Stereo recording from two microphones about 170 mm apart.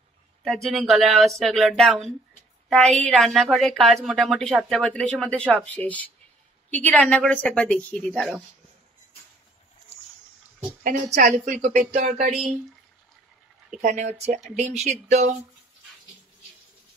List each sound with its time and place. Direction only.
0.4 s a woman's voice: centre (ahead or behind)
10.8 s a woman's voice: 50° right (ahead or behind)
13.7 s speech: 45° right (ahead or behind)